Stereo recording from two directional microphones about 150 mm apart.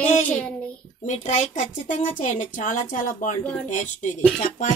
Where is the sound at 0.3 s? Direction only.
10° left (ahead or behind).